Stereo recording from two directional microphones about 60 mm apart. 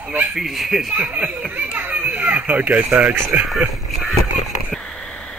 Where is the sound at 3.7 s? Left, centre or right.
Centre.